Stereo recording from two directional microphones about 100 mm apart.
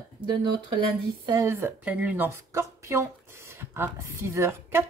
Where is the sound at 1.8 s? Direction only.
15° right (ahead or behind).